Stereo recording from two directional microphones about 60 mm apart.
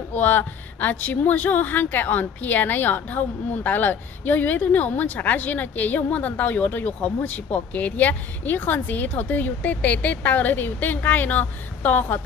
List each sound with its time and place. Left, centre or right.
0.1 s a woman's voice: left